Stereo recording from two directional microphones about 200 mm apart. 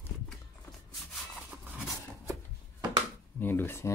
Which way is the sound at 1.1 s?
Centre (ahead or behind).